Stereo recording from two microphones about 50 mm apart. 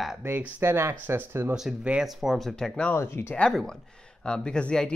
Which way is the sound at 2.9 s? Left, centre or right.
Left.